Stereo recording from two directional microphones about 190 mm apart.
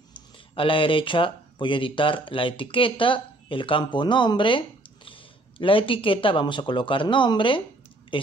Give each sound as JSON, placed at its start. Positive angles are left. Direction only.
{"t": 0.1, "sound": "a woman's voice", "side_deg": 30}